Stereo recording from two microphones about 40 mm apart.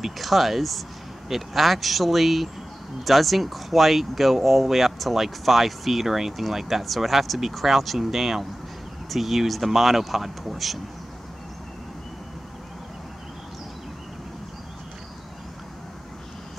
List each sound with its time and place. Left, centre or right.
0.0 s speech: centre